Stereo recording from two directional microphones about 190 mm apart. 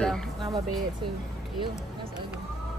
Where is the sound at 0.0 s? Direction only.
5° left (ahead or behind).